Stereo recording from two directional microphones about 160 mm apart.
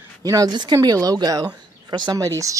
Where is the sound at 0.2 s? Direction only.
20° right (ahead or behind).